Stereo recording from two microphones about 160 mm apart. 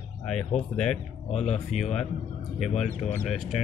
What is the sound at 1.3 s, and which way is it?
Speech, 45° left (ahead or behind).